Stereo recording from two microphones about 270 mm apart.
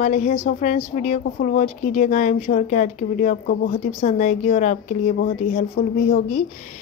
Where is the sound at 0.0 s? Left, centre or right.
Left.